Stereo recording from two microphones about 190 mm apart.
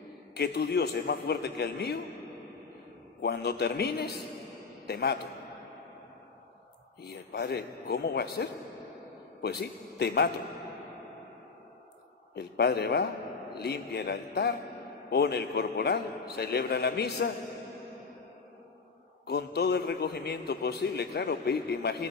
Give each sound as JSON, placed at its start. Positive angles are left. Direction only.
{"t": 0.3, "sound": "a man's voice", "side_deg": 60}
{"t": 3.2, "sound": "a man's voice", "side_deg": 60}
{"t": 7.0, "sound": "a man's voice", "side_deg": 60}
{"t": 12.4, "sound": "a man's voice", "side_deg": 60}
{"t": 19.2, "sound": "a man's voice", "side_deg": 60}